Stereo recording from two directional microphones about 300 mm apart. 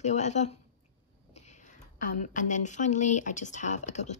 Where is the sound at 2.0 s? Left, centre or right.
Left.